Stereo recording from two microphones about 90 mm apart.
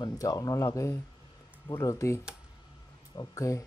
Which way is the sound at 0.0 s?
45° left (ahead or behind).